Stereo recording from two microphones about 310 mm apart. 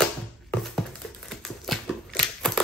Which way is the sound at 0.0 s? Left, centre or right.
Centre.